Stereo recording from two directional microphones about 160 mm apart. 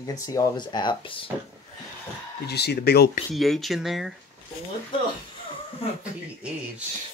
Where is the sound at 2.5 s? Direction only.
90° left.